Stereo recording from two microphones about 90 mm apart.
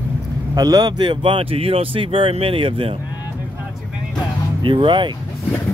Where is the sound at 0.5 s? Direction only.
45° right (ahead or behind).